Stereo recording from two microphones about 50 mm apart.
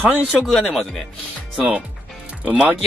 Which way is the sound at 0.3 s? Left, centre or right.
Centre.